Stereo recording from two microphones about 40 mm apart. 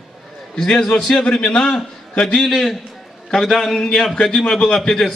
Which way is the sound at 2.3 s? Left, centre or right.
Centre.